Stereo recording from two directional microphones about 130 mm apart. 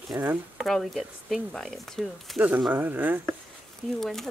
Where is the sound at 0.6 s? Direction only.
Centre (ahead or behind).